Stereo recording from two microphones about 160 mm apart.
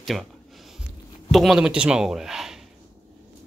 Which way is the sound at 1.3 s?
Centre (ahead or behind).